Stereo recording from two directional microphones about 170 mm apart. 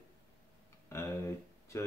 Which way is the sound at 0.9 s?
15° left (ahead or behind).